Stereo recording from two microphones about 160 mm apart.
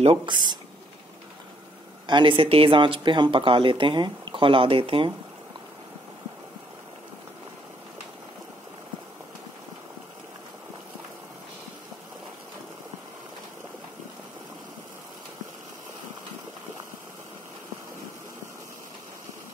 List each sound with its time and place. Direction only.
0.0 s speech: 30° right (ahead or behind)
2.0 s speech: 30° right (ahead or behind)